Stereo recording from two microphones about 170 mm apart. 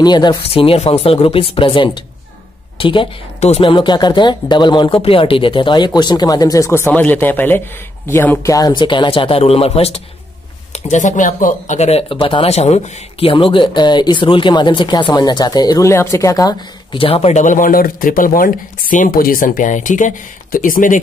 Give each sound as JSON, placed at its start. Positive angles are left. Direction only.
{"t": 0.0, "sound": "speech", "side_deg": 25}
{"t": 3.7, "sound": "speech", "side_deg": 25}
{"t": 10.7, "sound": "speech", "side_deg": 45}